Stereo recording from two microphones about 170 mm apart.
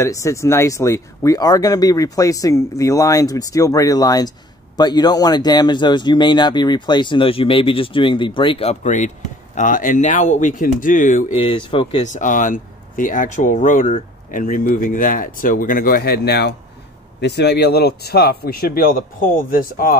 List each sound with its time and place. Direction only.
0.0 s speech: 15° left (ahead or behind); by 11.3 s 50° left (ahead or behind)
11.3 s speech: 30° left (ahead or behind)
12.0 s speech: 45° left (ahead or behind)